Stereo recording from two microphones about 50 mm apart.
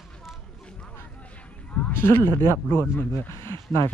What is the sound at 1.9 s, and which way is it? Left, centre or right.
Speech, left.